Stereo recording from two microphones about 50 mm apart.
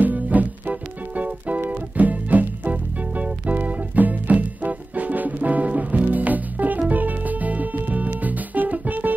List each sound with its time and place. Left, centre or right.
0.0 s music: right